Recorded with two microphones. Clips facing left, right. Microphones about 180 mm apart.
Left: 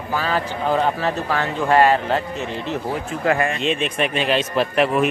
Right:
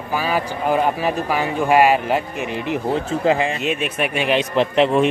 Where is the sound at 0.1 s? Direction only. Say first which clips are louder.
Right 1 dB; 10° right (ahead or behind).